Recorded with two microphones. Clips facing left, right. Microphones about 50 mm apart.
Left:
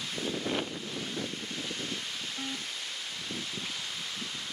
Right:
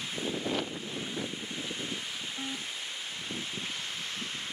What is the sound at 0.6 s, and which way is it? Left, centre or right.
Waves, centre.